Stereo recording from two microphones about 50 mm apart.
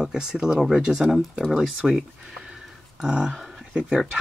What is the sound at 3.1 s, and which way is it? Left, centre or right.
Speech, centre.